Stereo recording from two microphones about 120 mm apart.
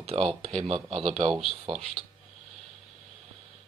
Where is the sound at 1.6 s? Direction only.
60° right (ahead or behind).